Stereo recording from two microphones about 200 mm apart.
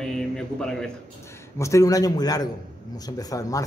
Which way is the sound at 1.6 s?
15° left (ahead or behind).